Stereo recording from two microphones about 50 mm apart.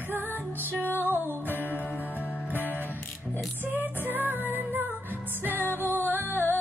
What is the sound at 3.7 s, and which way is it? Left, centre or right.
Music, right.